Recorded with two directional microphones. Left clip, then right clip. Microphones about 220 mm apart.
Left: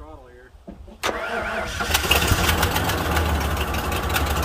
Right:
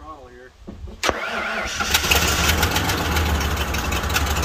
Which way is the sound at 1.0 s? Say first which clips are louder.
Right 2 dB; 20° left (ahead or behind).